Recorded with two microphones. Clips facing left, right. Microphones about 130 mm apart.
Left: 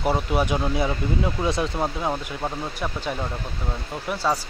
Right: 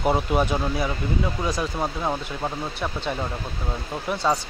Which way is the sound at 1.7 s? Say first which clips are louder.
Left 1 dB; 5° left (ahead or behind).